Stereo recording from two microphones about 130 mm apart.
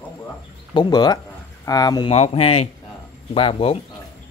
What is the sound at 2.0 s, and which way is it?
A man's voice, 50° left (ahead or behind).